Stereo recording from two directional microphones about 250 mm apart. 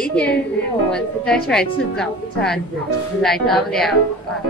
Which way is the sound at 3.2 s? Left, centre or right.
Centre.